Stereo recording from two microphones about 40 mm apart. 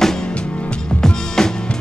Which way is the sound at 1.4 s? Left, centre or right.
Centre.